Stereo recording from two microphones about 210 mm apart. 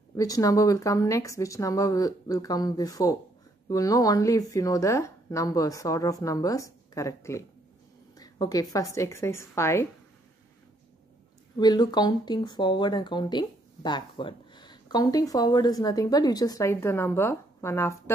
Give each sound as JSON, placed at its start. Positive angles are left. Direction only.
{"t": 0.1, "sound": "a woman's voice", "side_deg": 15}
{"t": 11.6, "sound": "speech", "side_deg": 20}